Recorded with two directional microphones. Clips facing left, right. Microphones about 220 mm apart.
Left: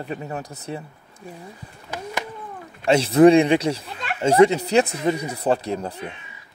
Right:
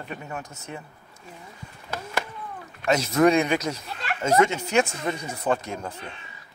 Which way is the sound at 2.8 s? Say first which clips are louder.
Left 6 dB; 30° left (ahead or behind).